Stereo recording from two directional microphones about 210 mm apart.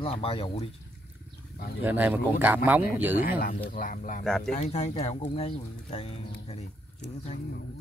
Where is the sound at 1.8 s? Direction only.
10° right (ahead or behind).